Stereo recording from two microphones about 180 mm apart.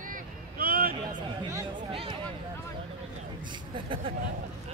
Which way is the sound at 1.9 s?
30° right (ahead or behind).